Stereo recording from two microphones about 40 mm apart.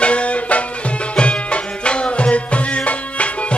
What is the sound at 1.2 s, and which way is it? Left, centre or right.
Tabla, left.